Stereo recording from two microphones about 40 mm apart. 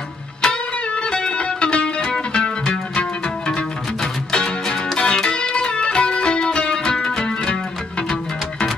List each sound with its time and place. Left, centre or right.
0.4 s music: left